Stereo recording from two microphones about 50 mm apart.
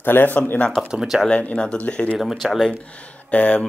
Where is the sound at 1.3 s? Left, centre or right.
Left.